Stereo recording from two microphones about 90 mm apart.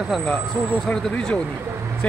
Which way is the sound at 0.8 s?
10° left (ahead or behind).